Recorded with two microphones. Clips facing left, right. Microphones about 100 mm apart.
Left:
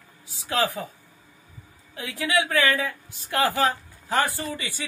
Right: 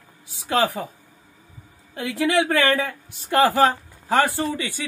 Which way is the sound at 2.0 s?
60° right (ahead or behind).